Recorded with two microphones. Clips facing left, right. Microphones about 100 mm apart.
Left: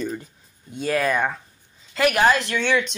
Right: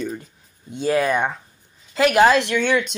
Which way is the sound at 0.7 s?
25° right (ahead or behind).